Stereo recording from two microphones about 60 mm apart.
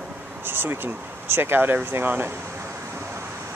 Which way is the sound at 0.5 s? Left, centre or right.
Right.